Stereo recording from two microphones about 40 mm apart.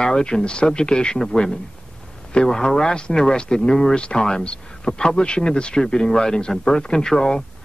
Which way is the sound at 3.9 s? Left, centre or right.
Left.